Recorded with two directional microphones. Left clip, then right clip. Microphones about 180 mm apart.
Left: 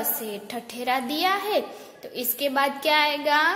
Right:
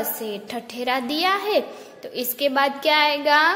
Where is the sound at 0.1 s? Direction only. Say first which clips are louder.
Right 3 dB; 10° right (ahead or behind).